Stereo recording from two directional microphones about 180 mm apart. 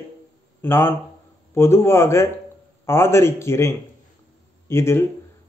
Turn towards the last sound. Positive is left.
turn(degrees=15)  # may be behind; listen again after turning